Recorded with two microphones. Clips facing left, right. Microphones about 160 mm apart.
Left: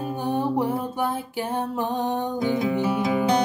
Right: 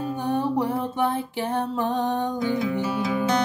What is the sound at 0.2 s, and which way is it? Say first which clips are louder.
Music: left 1 dB; 10° left (ahead or behind).